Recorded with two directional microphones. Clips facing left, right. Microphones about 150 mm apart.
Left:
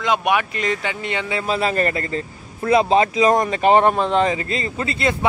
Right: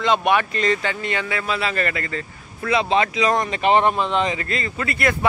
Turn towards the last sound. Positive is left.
turn(degrees=25)  # may be behind; listen again after turning